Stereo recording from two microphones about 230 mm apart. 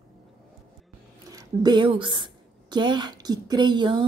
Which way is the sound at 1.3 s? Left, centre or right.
Centre.